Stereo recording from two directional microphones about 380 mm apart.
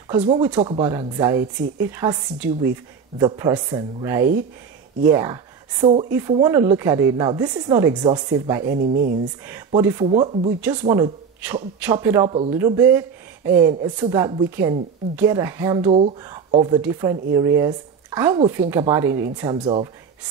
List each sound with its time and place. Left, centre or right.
0.1 s speech: centre
8.6 s speech: right
9.7 s speech: centre